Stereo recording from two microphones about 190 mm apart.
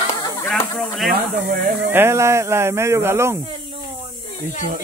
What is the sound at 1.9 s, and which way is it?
Speech, 10° right (ahead or behind).